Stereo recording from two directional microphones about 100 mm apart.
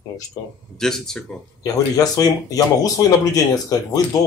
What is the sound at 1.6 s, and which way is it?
Speech, 35° left (ahead or behind).